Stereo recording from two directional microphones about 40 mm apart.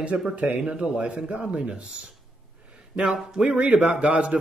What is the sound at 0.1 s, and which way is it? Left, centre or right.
A man's voice, right.